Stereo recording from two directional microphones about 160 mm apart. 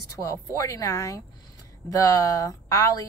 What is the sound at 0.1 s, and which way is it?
A woman's voice, 20° left (ahead or behind).